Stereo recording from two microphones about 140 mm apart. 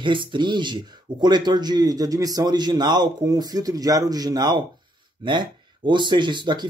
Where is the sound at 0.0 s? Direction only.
35° right (ahead or behind).